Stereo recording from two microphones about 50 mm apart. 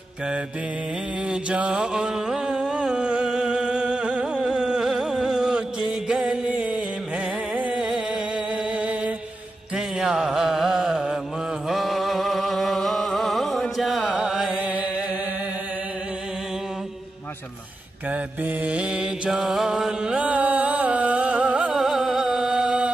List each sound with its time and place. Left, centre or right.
1.3 s mantra: right
1.7 s music: centre
6.4 s music: right
8.7 s mantra: right
9.8 s music: centre
14.1 s music: centre
14.5 s music: right
18.1 s mantra: right; by 20.2 s centre
20.2 s music: right
21.7 s music: centre